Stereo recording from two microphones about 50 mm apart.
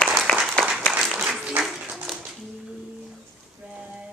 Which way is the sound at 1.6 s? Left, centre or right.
Centre.